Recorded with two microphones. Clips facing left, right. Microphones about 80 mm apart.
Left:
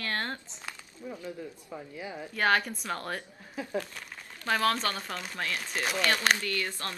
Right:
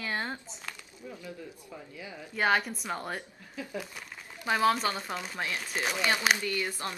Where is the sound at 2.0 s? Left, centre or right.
Left.